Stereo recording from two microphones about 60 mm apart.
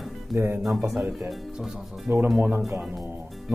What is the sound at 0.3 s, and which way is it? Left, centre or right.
Speech, right.